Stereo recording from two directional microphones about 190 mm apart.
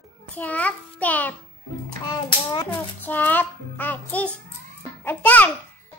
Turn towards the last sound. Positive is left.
turn(degrees=10)  # may be behind; listen again after turning